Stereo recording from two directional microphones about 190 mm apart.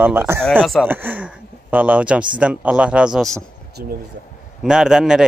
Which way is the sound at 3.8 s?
50° right (ahead or behind).